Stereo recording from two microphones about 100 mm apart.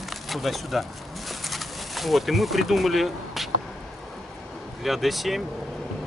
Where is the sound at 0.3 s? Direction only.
Centre (ahead or behind).